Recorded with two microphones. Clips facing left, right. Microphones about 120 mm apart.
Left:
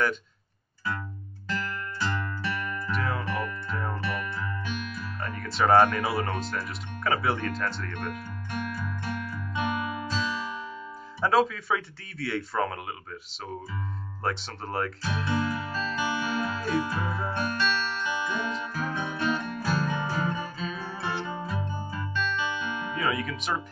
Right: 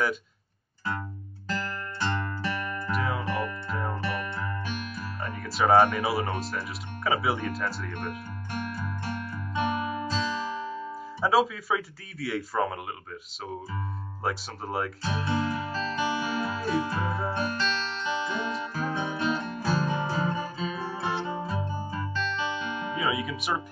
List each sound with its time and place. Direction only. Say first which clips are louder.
1.5 s music: even; 35° right (ahead or behind)
2.9 s music: right 1 dB; 5° right (ahead or behind)
4.0 s music: right 1 dB; 35° right (ahead or behind)
5.2 s speech: even; 5° right (ahead or behind)
8.6 s music: even; 35° right (ahead or behind)
11.1 s speech: even; 5° right (ahead or behind)
14.2 s speech: even; 5° right (ahead or behind)
15.0 s music: right 1 dB; 30° right (ahead or behind)
22.9 s speech: even; 5° right (ahead or behind)